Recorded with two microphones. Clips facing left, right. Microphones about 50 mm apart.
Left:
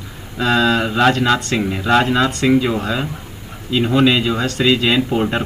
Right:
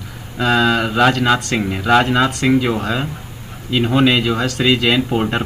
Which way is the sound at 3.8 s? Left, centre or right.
Centre.